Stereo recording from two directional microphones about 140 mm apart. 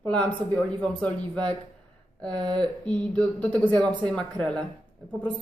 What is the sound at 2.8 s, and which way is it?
A woman's voice, 10° left (ahead or behind).